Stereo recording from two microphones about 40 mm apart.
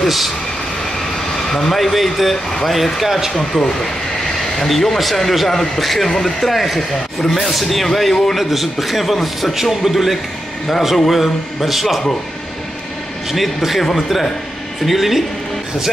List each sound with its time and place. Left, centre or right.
0.0 s speech: centre
1.5 s speech: centre
3.3 s speech: centre
13.3 s speech: centre